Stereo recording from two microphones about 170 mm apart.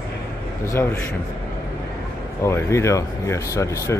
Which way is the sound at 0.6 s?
15° left (ahead or behind).